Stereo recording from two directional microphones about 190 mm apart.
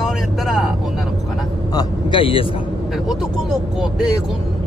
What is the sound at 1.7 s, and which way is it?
Vehicle, 25° left (ahead or behind).